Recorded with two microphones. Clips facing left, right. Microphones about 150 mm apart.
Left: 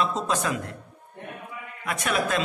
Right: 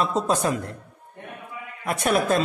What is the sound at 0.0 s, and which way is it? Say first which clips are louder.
Speech: right 3 dB; 35° right (ahead or behind).